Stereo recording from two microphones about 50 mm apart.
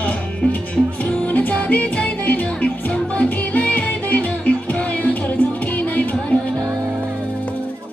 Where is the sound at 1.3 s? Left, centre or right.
Left.